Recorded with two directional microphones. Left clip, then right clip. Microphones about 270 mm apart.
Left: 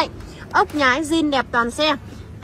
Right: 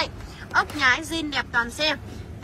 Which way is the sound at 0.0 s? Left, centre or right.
Centre.